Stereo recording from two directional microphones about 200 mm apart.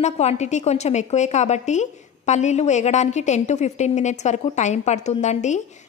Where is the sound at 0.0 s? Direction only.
35° left (ahead or behind).